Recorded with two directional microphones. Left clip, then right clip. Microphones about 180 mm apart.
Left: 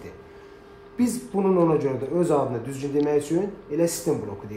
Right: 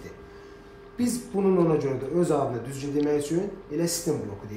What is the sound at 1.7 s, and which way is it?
Speech, 35° left (ahead or behind).